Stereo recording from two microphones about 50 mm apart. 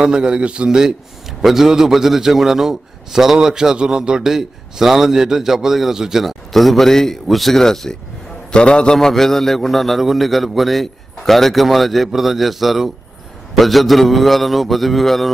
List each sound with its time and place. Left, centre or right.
0.0 s a man's voice: centre
6.5 s a man's voice: centre